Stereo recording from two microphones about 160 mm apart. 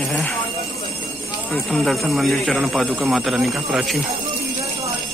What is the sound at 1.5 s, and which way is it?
Speech, 5° left (ahead or behind).